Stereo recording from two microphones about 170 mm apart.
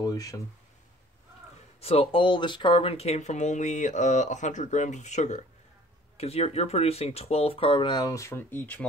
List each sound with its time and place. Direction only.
0.0 s speech: 20° left (ahead or behind)
1.8 s speech: 35° left (ahead or behind); by 8.8 s 10° left (ahead or behind)